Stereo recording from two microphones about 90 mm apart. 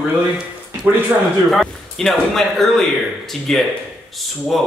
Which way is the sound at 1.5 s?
Centre (ahead or behind).